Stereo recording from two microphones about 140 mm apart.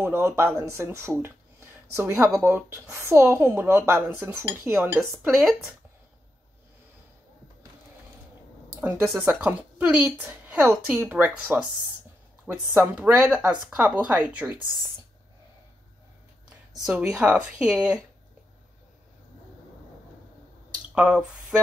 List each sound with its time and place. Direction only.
0.0 s a woman's voice: 15° right (ahead or behind)
5.1 s speech: centre (ahead or behind)
8.8 s a woman's voice: 10° right (ahead or behind)
16.8 s a woman's voice: 5° right (ahead or behind)
20.9 s a woman's voice: 5° right (ahead or behind)